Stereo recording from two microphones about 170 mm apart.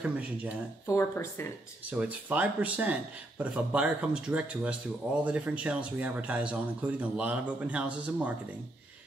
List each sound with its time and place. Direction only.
0.0 s speech: 10° right (ahead or behind)
0.8 s speech: 15° left (ahead or behind)
1.9 s speech: 10° right (ahead or behind)